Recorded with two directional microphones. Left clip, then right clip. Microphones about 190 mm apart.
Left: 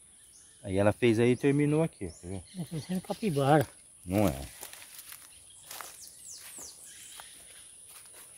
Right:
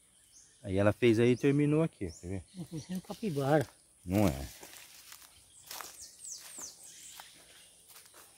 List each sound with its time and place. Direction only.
0.6 s speech: centre (ahead or behind)
2.7 s speech: 60° left (ahead or behind)
4.1 s speech: 10° right (ahead or behind)